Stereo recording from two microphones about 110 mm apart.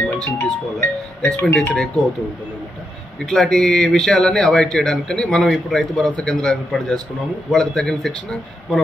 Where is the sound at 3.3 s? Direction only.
5° left (ahead or behind).